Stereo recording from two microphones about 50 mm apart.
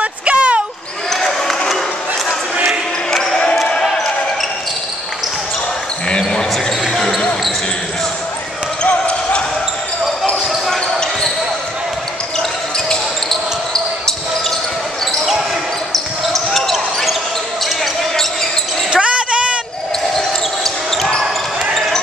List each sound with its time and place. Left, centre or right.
0.0 s a sound: right
1.1 s basketball bounce: centre
6.0 s basketball bounce: centre
6.9 s basketball bounce: centre
8.8 s basketball bounce: left
12.4 s basketball bounce: centre
16.3 s basketball bounce: centre
18.9 s basketball bounce: right
20.2 s basketball bounce: centre